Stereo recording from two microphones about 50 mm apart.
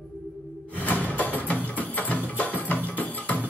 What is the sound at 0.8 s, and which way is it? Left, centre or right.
Music, left.